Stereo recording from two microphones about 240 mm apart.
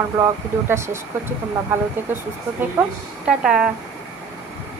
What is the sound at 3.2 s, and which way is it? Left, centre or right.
Speech, centre.